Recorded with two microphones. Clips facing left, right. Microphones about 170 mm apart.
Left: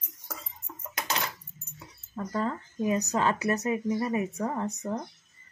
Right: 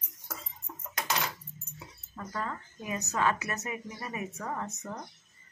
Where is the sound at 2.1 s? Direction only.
30° left (ahead or behind).